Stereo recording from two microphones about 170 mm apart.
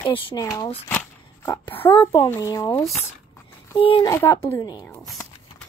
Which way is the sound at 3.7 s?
30° left (ahead or behind).